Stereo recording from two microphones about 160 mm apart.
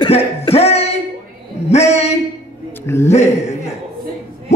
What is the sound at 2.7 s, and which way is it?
Speech, 15° left (ahead or behind).